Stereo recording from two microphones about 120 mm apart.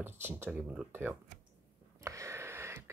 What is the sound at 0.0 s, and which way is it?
Speech, 20° right (ahead or behind).